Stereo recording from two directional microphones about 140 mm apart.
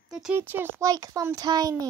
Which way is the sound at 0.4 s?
15° right (ahead or behind).